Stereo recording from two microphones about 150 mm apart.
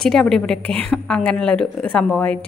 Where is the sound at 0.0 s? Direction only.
5° left (ahead or behind).